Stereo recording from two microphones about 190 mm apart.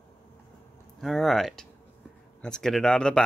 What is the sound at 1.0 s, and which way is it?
Speech, centre (ahead or behind).